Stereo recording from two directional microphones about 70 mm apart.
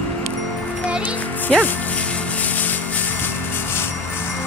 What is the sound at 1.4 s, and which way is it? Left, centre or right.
Speech, left.